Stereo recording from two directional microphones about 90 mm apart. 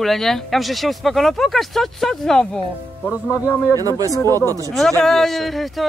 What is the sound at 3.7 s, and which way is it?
Speech, 40° right (ahead or behind).